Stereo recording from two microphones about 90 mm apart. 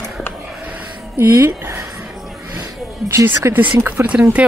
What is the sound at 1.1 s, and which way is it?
Speech, 30° right (ahead or behind).